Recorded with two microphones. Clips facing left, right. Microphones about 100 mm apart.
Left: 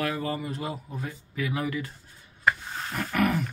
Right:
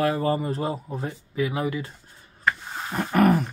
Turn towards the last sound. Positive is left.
turn(degrees=-35)  # may be behind; listen again after turning